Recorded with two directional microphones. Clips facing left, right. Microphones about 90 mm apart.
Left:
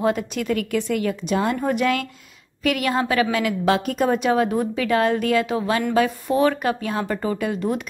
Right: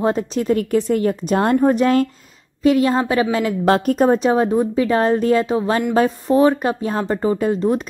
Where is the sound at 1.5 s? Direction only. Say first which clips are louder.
Right 7 dB; 35° right (ahead or behind).